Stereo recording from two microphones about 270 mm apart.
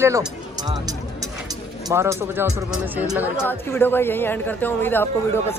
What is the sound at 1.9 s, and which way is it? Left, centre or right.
Speech, centre.